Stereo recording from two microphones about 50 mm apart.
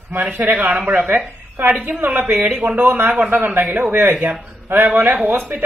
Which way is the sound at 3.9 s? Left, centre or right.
Right.